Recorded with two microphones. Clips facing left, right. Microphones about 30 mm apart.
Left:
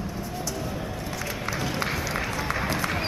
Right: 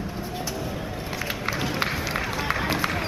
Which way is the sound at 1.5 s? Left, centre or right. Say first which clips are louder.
Right 2 dB; right.